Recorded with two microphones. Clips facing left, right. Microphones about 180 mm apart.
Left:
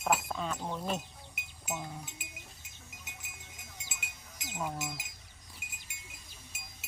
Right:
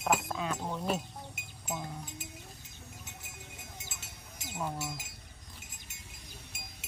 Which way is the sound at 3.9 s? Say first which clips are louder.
Even; 15° left (ahead or behind).